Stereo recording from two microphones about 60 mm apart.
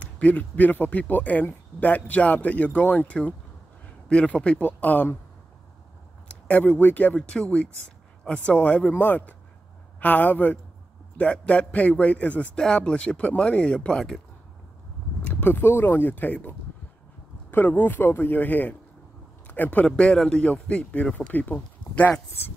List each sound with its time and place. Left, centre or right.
0.0 s speech: left
6.2 s a sound: centre
6.6 s speech: left
8.9 s speech: left
12.5 s speech: centre
15.2 s speech: left
20.0 s speech: centre
20.6 s speech: left